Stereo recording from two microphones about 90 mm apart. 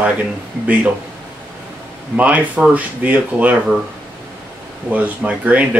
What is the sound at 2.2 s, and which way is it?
Speech, 15° right (ahead or behind).